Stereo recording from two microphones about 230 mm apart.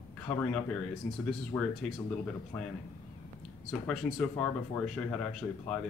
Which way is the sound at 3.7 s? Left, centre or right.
Centre.